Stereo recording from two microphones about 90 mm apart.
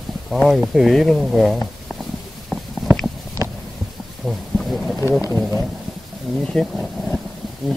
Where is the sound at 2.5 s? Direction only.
Centre (ahead or behind).